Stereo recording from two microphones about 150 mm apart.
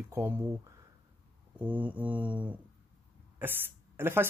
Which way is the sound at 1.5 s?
10° right (ahead or behind).